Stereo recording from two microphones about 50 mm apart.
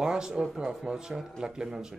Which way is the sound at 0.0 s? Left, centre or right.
Centre.